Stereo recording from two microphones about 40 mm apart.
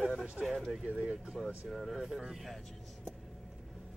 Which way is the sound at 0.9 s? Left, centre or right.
Right.